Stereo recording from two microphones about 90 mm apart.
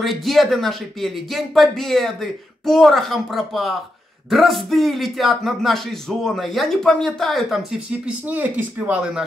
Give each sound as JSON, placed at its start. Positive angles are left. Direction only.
{"t": 0.0, "sound": "speech", "side_deg": 0}
{"t": 8.3, "sound": "speech", "side_deg": -20}